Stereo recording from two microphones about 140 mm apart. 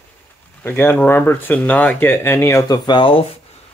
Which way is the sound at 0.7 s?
15° left (ahead or behind).